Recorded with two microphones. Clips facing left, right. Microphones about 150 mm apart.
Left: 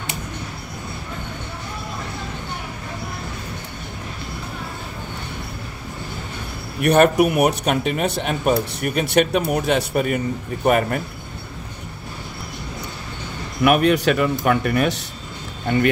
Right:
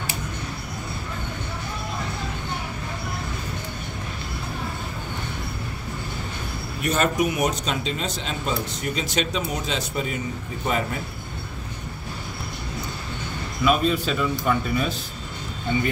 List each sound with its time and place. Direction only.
6.8 s speech: 65° left (ahead or behind)
13.7 s a man's voice: 70° left (ahead or behind)